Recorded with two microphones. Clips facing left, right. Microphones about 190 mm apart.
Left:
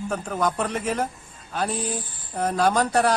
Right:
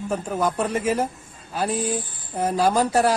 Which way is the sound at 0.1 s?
10° right (ahead or behind).